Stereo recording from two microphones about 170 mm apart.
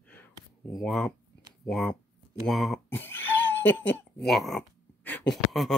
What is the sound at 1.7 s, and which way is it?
Speech, centre (ahead or behind).